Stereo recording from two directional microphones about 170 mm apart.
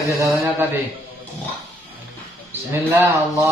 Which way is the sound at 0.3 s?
10° right (ahead or behind).